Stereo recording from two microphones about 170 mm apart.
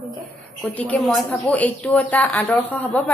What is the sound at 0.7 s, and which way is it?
A woman's voice, 10° left (ahead or behind).